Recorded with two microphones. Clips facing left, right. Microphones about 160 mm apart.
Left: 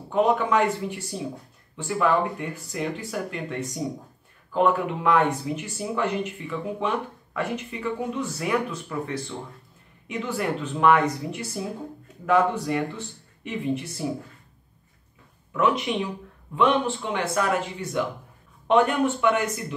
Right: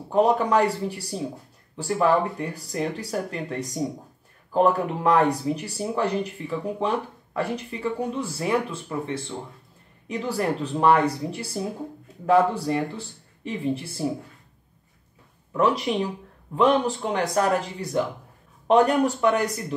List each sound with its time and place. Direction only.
0.1 s speech: 35° right (ahead or behind)
12.3 s speech: 30° right (ahead or behind)
15.5 s speech: 35° right (ahead or behind)